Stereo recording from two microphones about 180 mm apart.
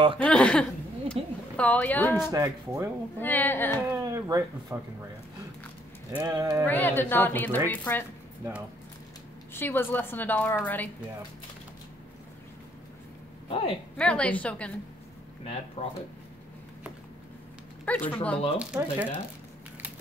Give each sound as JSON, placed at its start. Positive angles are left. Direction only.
{"t": 0.2, "sound": "speech", "side_deg": 5}
{"t": 2.3, "sound": "speech", "side_deg": -15}
{"t": 3.2, "sound": "speech", "side_deg": 10}
{"t": 3.9, "sound": "speech", "side_deg": -15}
{"t": 6.2, "sound": "speech", "side_deg": -20}
{"t": 6.6, "sound": "speech", "side_deg": 10}
{"t": 9.5, "sound": "speech", "side_deg": 10}
{"t": 13.5, "sound": "a woman's voice", "side_deg": 30}
{"t": 13.9, "sound": "speech", "side_deg": 5}
{"t": 15.4, "sound": "speech", "side_deg": 35}
{"t": 17.8, "sound": "speech", "side_deg": 10}
{"t": 18.6, "sound": "speech", "side_deg": -5}